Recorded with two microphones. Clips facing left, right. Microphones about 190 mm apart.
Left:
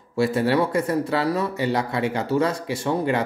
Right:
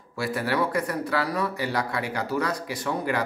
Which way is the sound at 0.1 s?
25° left (ahead or behind).